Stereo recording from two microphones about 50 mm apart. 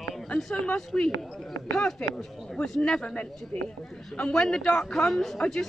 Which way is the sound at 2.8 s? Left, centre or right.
Centre.